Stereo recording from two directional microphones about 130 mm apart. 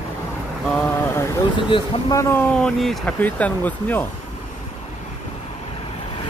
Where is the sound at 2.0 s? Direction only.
20° left (ahead or behind); by 3.2 s centre (ahead or behind).